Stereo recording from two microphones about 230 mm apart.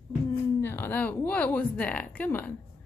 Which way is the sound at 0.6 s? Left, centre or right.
Centre.